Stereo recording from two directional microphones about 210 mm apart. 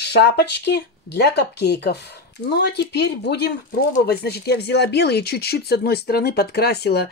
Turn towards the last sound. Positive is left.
turn(degrees=50)  # may be behind; listen again after turning